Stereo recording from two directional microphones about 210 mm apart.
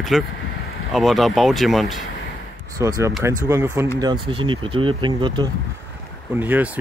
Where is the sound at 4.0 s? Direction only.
25° right (ahead or behind).